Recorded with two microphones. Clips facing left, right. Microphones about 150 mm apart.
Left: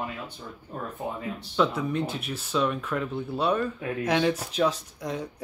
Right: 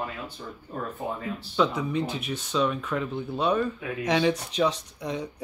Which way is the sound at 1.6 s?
Centre (ahead or behind).